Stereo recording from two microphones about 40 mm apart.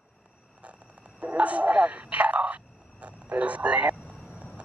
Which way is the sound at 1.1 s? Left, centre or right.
Right.